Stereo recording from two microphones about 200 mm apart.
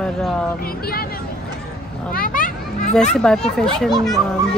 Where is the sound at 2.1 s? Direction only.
45° left (ahead or behind).